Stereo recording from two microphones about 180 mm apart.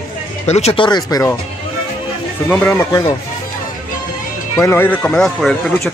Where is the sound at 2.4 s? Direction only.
10° left (ahead or behind).